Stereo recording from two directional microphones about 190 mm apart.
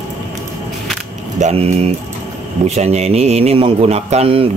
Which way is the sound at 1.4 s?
35° right (ahead or behind).